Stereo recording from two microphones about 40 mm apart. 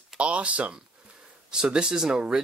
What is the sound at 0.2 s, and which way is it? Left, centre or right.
Speech, right.